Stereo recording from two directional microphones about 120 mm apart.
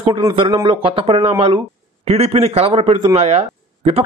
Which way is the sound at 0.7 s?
50° right (ahead or behind).